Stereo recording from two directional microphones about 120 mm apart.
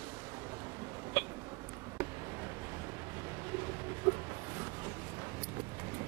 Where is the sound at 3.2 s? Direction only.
25° right (ahead or behind).